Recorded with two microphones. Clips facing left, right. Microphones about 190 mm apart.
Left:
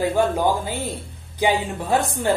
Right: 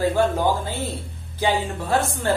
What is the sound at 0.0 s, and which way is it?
Speech, 15° left (ahead or behind).